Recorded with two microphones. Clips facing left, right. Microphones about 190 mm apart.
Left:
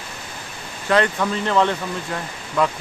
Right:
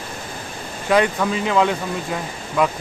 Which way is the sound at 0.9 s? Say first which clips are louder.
Right 1 dB; 10° right (ahead or behind).